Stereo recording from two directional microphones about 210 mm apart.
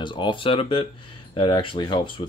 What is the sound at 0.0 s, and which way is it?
Speech, 25° left (ahead or behind).